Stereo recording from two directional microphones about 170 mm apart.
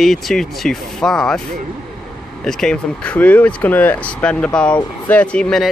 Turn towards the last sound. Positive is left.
turn(degrees=5)  # may be behind; listen again after turning